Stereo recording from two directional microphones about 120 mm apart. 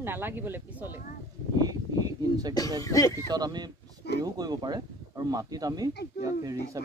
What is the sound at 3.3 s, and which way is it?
Speech, 35° right (ahead or behind).